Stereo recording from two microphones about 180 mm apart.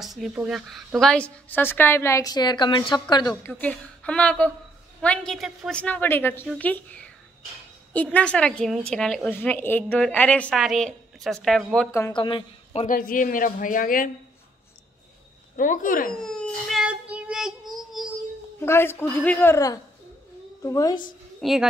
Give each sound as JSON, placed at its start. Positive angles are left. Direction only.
{"t": 0.0, "sound": "a woman's voice", "side_deg": 0}
{"t": 3.5, "sound": "a woman's voice", "side_deg": 5}
{"t": 12.1, "sound": "speech", "side_deg": 25}
{"t": 12.8, "sound": "speech", "side_deg": 50}
{"t": 15.5, "sound": "speech", "side_deg": 45}
{"t": 16.1, "sound": "child singing", "side_deg": 5}
{"t": 18.6, "sound": "a woman's voice", "side_deg": 10}
{"t": 21.4, "sound": "speech", "side_deg": 0}